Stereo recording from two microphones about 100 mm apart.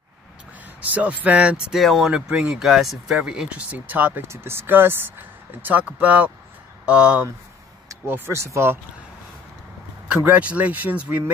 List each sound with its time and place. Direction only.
0.7 s speech: 15° right (ahead or behind)
1.8 s speech: centre (ahead or behind)
7.9 s speech: 25° right (ahead or behind)
10.2 s speech: 15° right (ahead or behind)